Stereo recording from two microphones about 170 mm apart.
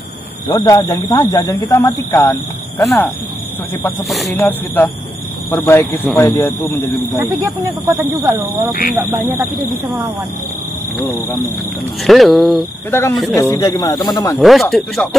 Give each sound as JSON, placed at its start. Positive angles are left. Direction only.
{"t": 0.5, "sound": "speech", "side_deg": 20}
{"t": 4.4, "sound": "speech", "side_deg": 10}
{"t": 7.6, "sound": "speech", "side_deg": -15}
{"t": 12.0, "sound": "speech", "side_deg": 0}
{"t": 12.9, "sound": "speech", "side_deg": 15}
{"t": 14.4, "sound": "speech", "side_deg": 0}